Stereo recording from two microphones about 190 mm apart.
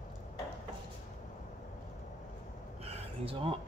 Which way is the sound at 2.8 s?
30° right (ahead or behind).